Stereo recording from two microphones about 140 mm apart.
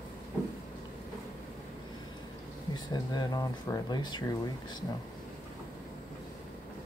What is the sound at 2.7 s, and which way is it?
Speech, 30° left (ahead or behind).